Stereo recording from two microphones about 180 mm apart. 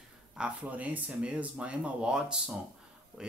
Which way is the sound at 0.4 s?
10° right (ahead or behind).